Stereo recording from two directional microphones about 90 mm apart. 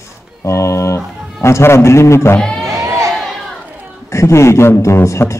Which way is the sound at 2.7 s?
35° right (ahead or behind).